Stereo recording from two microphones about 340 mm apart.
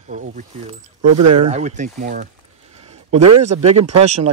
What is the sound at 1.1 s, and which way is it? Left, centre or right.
Speech, right.